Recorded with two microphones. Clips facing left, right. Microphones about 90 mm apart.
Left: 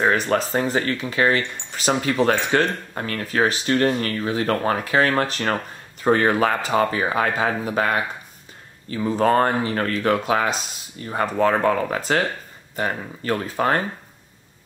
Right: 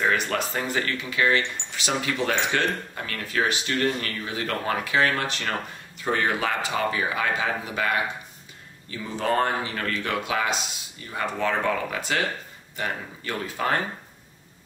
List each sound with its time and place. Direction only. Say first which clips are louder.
0.0 s speech: left 5 dB; 35° left (ahead or behind)